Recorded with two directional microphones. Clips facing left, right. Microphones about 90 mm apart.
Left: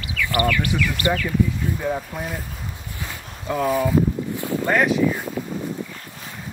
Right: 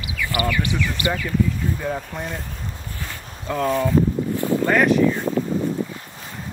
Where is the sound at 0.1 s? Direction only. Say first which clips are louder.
Left 2 dB; 20° right (ahead or behind).